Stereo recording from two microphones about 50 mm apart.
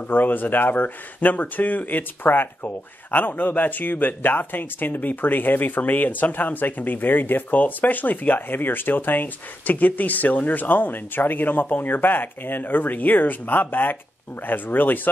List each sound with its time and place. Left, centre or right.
0.1 s speech: left